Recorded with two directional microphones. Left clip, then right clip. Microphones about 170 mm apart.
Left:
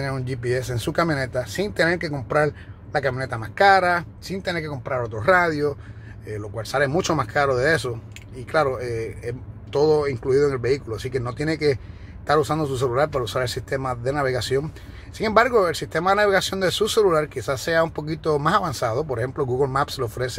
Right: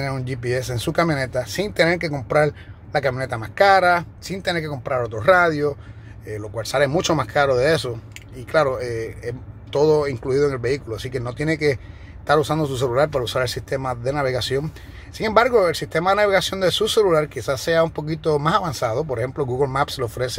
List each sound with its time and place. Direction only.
0.0 s speech: 15° right (ahead or behind)